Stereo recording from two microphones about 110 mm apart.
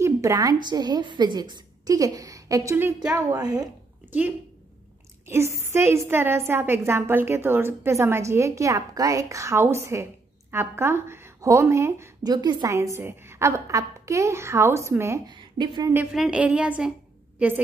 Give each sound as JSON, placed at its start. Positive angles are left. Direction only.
{"t": 0.0, "sound": "a woman's voice", "side_deg": -25}
{"t": 5.3, "sound": "a woman's voice", "side_deg": -25}
{"t": 12.2, "sound": "a woman's voice", "side_deg": -40}
{"t": 12.6, "sound": "a woman's voice", "side_deg": -30}
{"t": 15.2, "sound": "a woman's voice", "side_deg": -40}
{"t": 16.1, "sound": "a woman's voice", "side_deg": -10}